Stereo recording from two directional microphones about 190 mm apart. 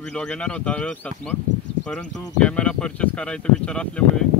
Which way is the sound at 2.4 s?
5° left (ahead or behind).